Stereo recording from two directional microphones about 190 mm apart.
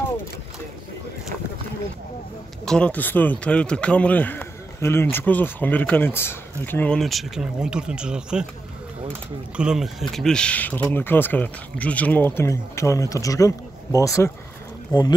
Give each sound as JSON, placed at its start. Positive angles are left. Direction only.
{"t": 2.6, "sound": "speech", "side_deg": 5}
{"t": 9.6, "sound": "speech", "side_deg": -5}